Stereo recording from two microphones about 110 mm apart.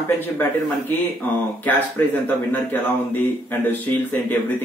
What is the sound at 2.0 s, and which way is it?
Speech, 20° left (ahead or behind).